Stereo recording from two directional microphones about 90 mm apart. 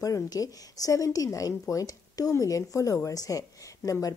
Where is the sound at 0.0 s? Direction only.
40° left (ahead or behind).